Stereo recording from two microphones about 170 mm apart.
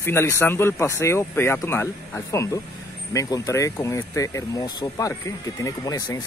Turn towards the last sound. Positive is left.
turn(degrees=25)  # may be behind; listen again after turning